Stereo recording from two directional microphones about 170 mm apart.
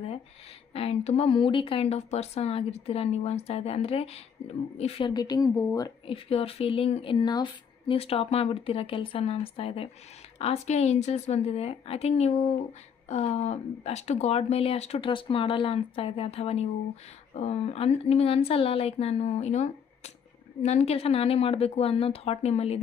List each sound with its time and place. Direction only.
0.7 s a woman's voice: 35° left (ahead or behind); by 5.9 s 20° left (ahead or behind)
6.0 s speech: 35° left (ahead or behind)